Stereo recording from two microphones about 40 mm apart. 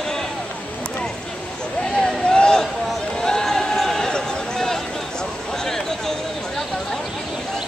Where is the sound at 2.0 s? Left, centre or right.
Centre.